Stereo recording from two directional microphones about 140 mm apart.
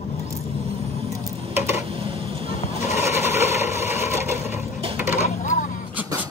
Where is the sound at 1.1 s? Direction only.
25° right (ahead or behind).